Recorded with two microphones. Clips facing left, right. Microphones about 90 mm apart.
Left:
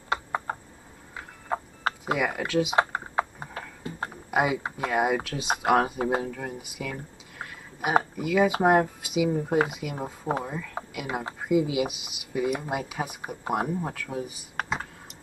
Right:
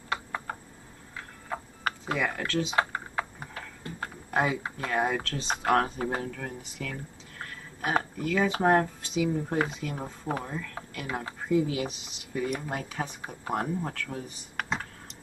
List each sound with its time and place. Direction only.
0.1 s a sound: 25° left (ahead or behind)
2.1 s computer keyboard: 10° left (ahead or behind)
4.6 s speech: 15° left (ahead or behind)